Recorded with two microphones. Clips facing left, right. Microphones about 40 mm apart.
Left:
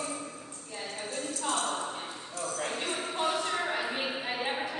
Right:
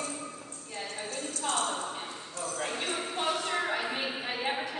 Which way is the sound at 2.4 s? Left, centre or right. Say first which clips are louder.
Even; centre.